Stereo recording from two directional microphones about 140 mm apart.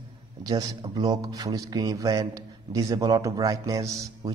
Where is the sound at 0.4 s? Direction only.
25° right (ahead or behind).